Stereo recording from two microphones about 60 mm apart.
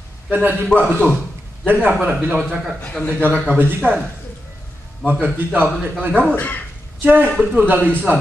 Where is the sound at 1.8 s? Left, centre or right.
Right.